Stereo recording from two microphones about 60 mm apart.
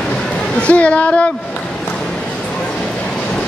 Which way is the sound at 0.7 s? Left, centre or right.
Left.